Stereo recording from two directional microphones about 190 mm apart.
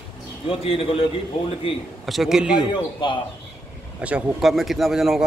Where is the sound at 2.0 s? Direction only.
Centre (ahead or behind).